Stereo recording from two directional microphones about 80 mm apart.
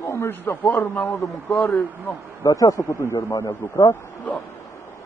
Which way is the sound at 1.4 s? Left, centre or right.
Centre.